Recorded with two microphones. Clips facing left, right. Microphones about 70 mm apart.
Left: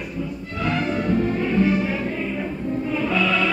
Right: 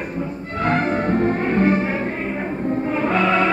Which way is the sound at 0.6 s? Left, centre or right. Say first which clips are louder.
Right 3 dB; right.